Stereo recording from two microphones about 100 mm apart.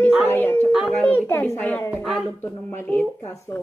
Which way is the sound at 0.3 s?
25° left (ahead or behind).